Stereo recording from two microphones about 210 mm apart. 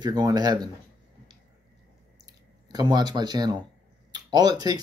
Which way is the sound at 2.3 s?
20° right (ahead or behind).